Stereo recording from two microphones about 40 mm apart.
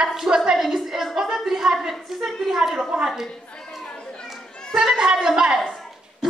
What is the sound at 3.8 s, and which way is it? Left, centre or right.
Chatter, left.